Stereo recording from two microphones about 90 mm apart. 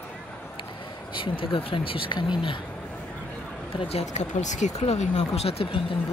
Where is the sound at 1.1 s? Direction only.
70° left (ahead or behind).